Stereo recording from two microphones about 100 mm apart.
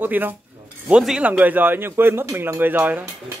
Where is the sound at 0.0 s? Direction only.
20° right (ahead or behind).